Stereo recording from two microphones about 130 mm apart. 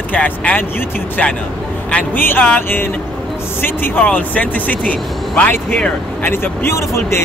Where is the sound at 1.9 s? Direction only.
10° left (ahead or behind).